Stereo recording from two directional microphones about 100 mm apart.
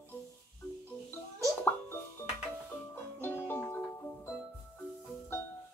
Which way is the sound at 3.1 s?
20° left (ahead or behind).